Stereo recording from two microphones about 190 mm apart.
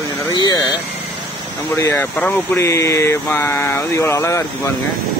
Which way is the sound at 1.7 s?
15° left (ahead or behind).